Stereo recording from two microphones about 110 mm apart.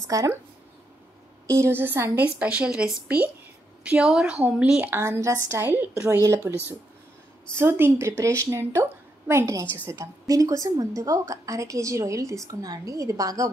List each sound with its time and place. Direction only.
0.0 s a woman's voice: 30° right (ahead or behind)
1.6 s a woman's voice: 20° right (ahead or behind)
5.0 s a woman's voice: 25° right (ahead or behind)
7.5 s a woman's voice: 20° right (ahead or behind)